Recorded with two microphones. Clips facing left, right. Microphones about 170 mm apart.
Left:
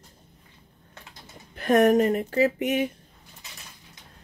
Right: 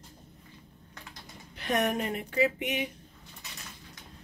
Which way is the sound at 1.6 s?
45° left (ahead or behind).